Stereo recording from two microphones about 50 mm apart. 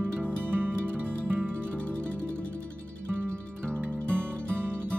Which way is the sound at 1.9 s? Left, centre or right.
Left.